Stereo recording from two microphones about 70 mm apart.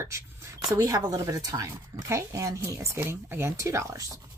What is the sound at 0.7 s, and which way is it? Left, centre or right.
Speech, right.